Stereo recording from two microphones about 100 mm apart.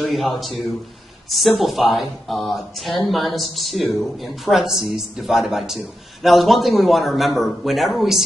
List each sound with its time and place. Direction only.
0.0 s speech: centre (ahead or behind)
1.3 s speech: centre (ahead or behind)